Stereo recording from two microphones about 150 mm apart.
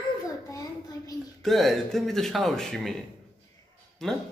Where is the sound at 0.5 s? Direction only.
25° left (ahead or behind).